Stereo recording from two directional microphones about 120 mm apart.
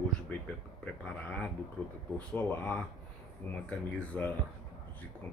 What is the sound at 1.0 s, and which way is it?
Speech, 10° left (ahead or behind).